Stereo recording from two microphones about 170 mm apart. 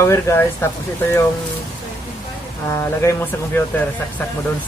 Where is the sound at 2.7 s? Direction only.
15° left (ahead or behind).